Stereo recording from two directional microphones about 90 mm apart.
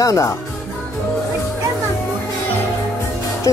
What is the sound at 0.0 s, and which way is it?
Speech, 40° left (ahead or behind).